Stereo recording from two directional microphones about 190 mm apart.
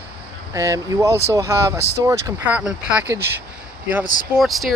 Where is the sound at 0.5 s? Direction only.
15° right (ahead or behind).